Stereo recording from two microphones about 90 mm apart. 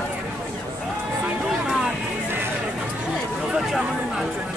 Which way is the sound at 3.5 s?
5° right (ahead or behind).